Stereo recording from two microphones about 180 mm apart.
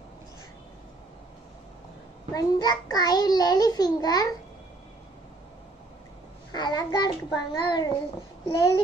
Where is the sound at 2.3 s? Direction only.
20° left (ahead or behind).